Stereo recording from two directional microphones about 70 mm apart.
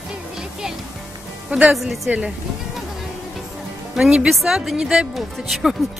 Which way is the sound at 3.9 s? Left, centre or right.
Centre.